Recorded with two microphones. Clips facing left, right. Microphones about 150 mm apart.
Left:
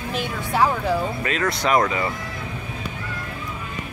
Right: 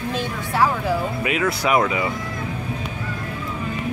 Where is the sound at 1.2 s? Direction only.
10° right (ahead or behind).